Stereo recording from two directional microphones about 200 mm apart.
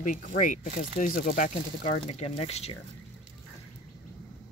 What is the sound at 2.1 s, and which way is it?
Speech, 30° left (ahead or behind).